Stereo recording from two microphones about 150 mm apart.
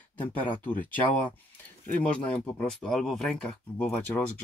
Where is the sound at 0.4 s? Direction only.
10° left (ahead or behind).